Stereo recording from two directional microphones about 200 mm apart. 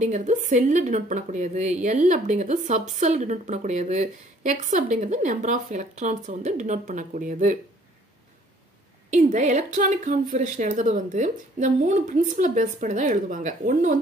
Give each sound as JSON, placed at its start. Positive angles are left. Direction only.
{"t": 0.0, "sound": "a woman's voice", "side_deg": -35}
{"t": 9.1, "sound": "a woman's voice", "side_deg": -35}